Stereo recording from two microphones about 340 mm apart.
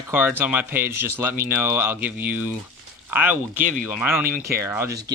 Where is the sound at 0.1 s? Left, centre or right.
Centre.